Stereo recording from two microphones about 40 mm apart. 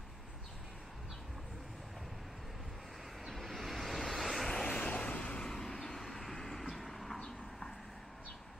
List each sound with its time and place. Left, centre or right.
3.3 s vehicle: centre
4.6 s vehicle: left
5.4 s vehicle: centre
7.2 s vehicle: centre